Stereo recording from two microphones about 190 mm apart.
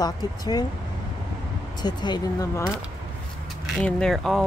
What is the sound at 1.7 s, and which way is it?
Speech, 20° left (ahead or behind).